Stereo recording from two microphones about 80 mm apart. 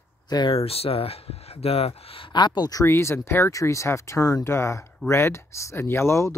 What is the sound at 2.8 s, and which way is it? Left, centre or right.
Speech, left.